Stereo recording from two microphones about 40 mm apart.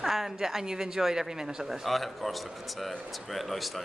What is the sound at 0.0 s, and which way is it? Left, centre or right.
A woman's voice, centre.